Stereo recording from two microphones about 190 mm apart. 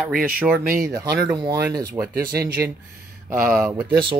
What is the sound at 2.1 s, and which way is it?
Speech, 55° right (ahead or behind).